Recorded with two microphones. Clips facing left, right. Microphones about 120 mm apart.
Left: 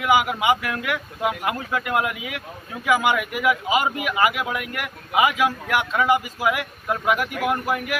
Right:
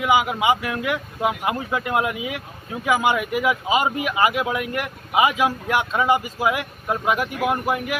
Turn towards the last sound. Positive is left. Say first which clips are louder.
# right 1 dB
turn(degrees=-20)  # may be behind; listen again after turning